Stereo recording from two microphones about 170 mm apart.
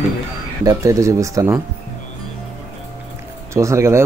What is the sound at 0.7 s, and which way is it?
Speech, 20° right (ahead or behind).